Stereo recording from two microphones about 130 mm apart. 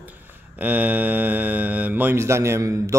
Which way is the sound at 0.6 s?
10° right (ahead or behind).